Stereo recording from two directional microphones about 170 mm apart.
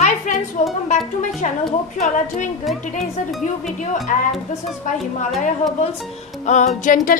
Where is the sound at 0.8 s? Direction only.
45° left (ahead or behind).